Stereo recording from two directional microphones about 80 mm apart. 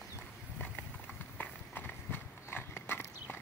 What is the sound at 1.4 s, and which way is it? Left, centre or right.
Horse, left.